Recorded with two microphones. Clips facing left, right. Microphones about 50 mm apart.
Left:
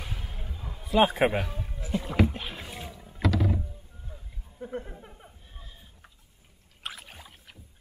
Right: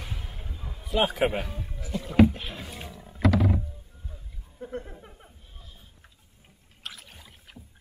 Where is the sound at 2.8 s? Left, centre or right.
Centre.